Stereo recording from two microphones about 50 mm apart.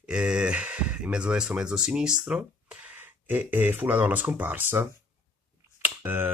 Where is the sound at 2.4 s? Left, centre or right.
Right.